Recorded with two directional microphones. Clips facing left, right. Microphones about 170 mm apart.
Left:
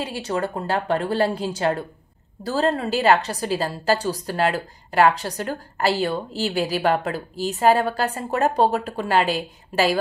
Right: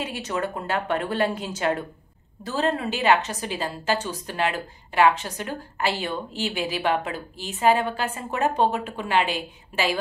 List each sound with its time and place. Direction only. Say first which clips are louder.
0.0 s a woman's voice: left 3 dB; 30° left (ahead or behind)